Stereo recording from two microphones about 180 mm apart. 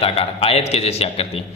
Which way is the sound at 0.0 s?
35° left (ahead or behind).